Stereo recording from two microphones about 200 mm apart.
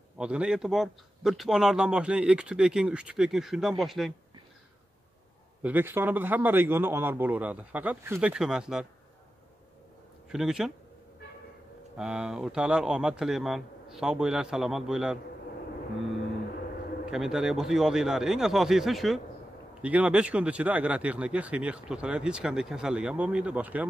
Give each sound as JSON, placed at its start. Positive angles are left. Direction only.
{"t": 0.2, "sound": "speech", "side_deg": -5}
{"t": 5.6, "sound": "a man's voice", "side_deg": -10}
{"t": 10.3, "sound": "speech", "side_deg": 0}
{"t": 12.0, "sound": "speech", "side_deg": -5}
{"t": 17.1, "sound": "speech", "side_deg": 0}